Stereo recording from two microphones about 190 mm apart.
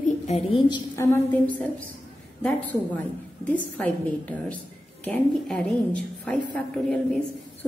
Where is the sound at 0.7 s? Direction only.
15° left (ahead or behind).